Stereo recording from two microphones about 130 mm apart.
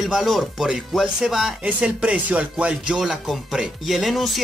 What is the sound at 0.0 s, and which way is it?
Speech, centre (ahead or behind).